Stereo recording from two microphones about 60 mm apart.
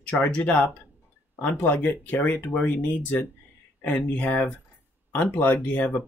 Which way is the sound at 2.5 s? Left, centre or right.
Left.